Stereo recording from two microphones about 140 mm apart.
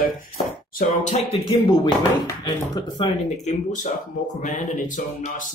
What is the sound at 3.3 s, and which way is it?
Speech, 55° left (ahead or behind).